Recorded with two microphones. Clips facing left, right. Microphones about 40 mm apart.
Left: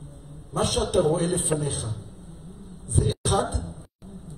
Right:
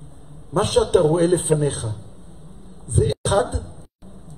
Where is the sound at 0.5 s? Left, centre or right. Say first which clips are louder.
Right 6 dB; right.